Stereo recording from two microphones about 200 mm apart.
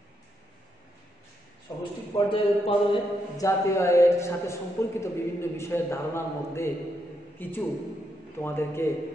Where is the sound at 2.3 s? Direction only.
25° left (ahead or behind).